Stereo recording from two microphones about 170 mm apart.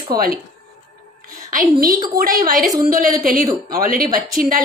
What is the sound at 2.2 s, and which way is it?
A woman's voice, 55° right (ahead or behind).